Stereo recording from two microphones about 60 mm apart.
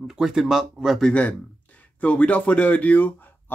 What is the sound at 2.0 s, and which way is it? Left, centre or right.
Speech, left.